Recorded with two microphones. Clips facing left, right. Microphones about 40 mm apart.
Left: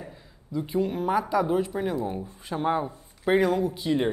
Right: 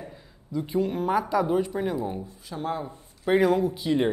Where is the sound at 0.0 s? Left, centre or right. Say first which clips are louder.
Right 1 dB; centre.